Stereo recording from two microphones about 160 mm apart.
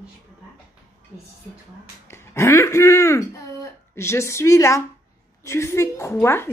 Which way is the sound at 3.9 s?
15° left (ahead or behind).